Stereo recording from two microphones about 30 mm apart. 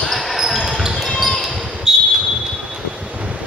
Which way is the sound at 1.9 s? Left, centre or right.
Right.